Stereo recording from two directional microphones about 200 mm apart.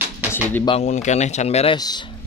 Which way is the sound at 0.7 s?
35° left (ahead or behind).